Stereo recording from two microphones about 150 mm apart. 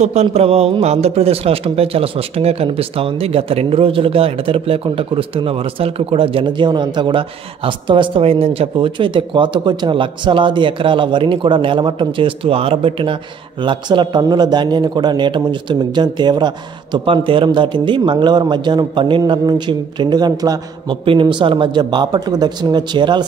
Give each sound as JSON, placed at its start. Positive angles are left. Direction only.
{"t": 0.0, "sound": "a man's voice", "side_deg": -45}